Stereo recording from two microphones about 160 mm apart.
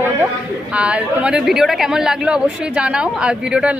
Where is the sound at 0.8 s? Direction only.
5° right (ahead or behind).